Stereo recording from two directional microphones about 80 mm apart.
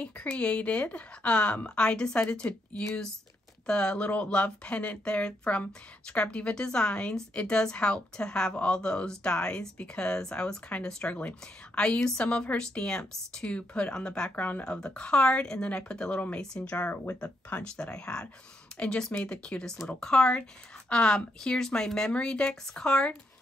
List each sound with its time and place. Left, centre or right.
0.0 s speech: centre
3.6 s speech: centre
17.2 s speech: centre